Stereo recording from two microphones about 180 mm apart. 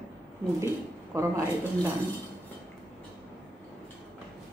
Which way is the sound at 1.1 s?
15° right (ahead or behind).